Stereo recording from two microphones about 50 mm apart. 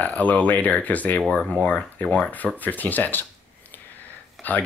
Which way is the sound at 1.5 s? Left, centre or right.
Left.